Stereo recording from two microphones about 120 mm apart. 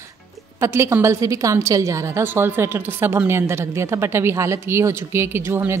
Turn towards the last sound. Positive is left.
turn(degrees=-20)  # may be behind; listen again after turning